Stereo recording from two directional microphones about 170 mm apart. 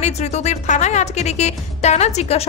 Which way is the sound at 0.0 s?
40° left (ahead or behind).